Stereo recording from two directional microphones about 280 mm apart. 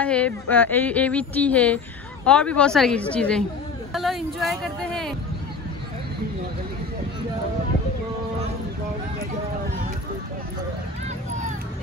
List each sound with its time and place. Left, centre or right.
0.0 s speech: centre